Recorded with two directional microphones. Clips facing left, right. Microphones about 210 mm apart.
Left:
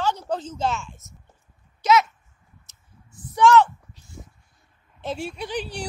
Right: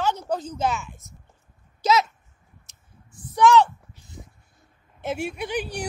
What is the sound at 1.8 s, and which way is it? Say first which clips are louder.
Speech: left 2 dB; 35° right (ahead or behind).